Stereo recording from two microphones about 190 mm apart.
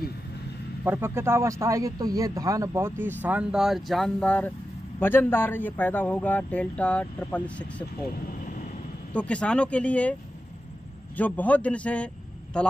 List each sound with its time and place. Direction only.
0.8 s a man's voice: 10° right (ahead or behind); by 7.6 s 5° left (ahead or behind)
8.3 s vehicle: 45° left (ahead or behind)
9.1 s speech: 5° left (ahead or behind)
11.1 s speech: 10° left (ahead or behind)